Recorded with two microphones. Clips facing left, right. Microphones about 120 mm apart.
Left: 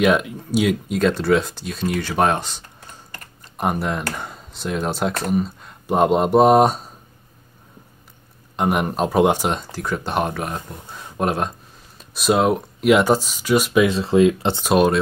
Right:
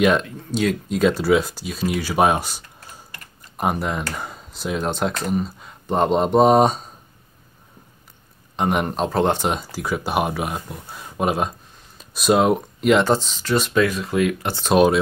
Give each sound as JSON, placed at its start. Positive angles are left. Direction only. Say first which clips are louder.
{"t": 0.0, "sound": "speech", "louder": "even", "side_deg": 5}
{"t": 0.9, "sound": "speech", "louder": "right 1 dB", "side_deg": -5}
{"t": 8.5, "sound": "speech", "louder": "left 1 dB", "side_deg": 5}
{"t": 9.5, "sound": "speech", "louder": "even", "side_deg": -5}
{"t": 13.8, "sound": "speech", "louder": "left 5 dB", "side_deg": 25}
{"t": 14.6, "sound": "speech", "louder": "right 2 dB", "side_deg": 0}